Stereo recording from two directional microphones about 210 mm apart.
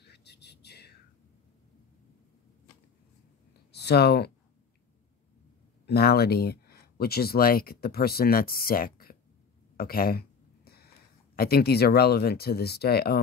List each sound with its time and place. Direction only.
0.0 s whispering: 50° left (ahead or behind)
3.7 s speech: 50° left (ahead or behind)
5.9 s speech: 50° left (ahead or behind)
9.8 s a sound: 45° left (ahead or behind)
11.3 s speech: 45° left (ahead or behind)